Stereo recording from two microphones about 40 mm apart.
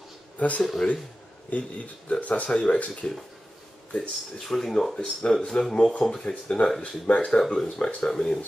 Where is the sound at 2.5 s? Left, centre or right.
Left.